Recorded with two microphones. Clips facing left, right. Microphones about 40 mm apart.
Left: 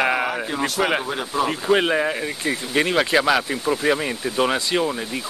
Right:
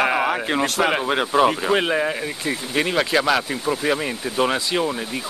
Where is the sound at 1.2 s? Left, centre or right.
Right.